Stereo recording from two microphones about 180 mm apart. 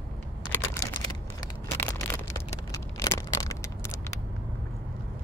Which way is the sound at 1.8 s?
10° left (ahead or behind).